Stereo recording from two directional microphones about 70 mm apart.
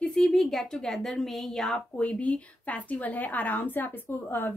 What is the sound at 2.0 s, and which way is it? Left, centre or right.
Speech, centre.